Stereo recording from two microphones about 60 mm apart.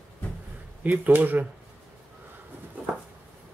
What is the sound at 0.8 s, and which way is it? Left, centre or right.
Speech, right.